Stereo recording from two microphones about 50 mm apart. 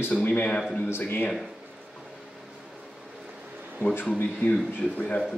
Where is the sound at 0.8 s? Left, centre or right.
Left.